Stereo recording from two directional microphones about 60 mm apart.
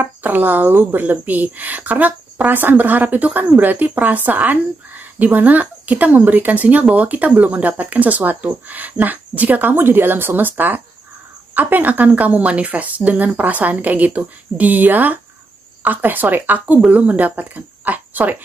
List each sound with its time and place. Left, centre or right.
0.0 s a sound: right
0.9 s speech: right
11.5 s speech: right